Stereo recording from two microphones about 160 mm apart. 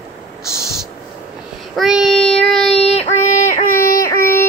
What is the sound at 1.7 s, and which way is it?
Child singing, centre (ahead or behind).